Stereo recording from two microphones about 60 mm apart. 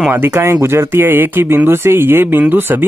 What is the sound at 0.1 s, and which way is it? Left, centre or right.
Speech, right.